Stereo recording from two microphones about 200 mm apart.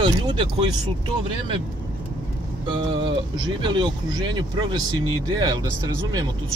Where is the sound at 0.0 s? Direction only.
25° right (ahead or behind).